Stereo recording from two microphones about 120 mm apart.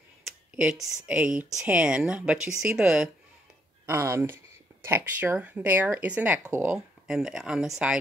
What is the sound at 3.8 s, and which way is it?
Speech, 20° right (ahead or behind).